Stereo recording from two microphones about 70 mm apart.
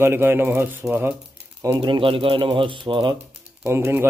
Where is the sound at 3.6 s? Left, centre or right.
Right.